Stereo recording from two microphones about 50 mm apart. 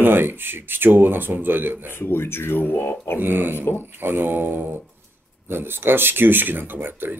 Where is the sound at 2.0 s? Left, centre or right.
Left.